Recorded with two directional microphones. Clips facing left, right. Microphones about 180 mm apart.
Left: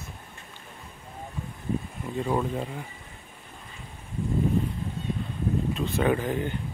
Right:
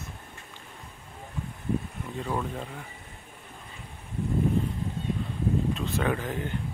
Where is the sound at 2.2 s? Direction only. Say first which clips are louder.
Left 4 dB; 15° left (ahead or behind).